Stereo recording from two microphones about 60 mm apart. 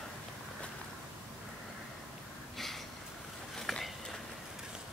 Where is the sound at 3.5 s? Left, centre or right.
Centre.